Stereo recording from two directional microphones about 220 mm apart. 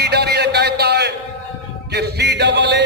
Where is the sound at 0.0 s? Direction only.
50° right (ahead or behind).